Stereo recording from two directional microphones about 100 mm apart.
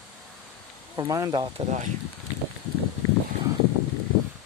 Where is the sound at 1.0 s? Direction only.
35° right (ahead or behind).